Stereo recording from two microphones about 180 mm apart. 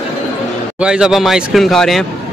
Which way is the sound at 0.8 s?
5° right (ahead or behind).